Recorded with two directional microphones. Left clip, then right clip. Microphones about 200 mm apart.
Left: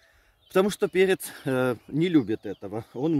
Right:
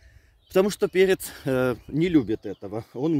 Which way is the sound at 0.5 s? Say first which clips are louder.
Right 2 dB; 20° right (ahead or behind).